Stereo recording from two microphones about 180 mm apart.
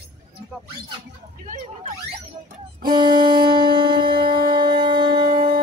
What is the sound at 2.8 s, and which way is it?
Music, 25° right (ahead or behind).